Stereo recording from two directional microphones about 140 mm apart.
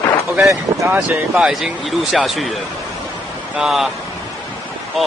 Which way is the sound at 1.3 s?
5° right (ahead or behind).